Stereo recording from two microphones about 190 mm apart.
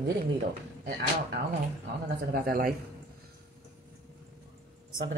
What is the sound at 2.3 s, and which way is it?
Speech, 50° right (ahead or behind).